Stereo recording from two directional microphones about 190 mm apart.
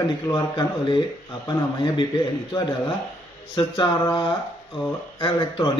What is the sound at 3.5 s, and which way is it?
Speech, 25° left (ahead or behind).